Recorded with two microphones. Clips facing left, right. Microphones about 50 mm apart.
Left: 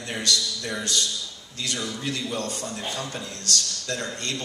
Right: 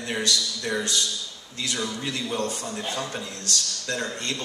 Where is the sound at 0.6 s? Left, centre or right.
Centre.